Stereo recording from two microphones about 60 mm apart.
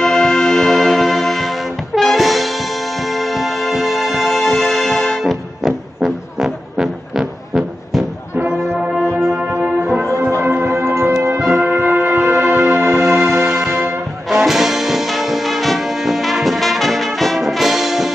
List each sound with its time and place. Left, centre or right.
0.0 s music: centre
2.0 s brass instrument: centre
3.1 s music: centre
9.3 s brass instrument: right
10.3 s music: right
11.8 s music: right
14.3 s music: centre